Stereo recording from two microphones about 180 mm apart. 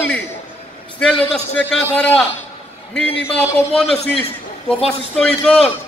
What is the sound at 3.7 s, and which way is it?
A man's voice, 5° left (ahead or behind).